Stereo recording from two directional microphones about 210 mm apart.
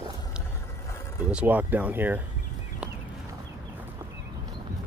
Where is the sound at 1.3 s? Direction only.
5° right (ahead or behind).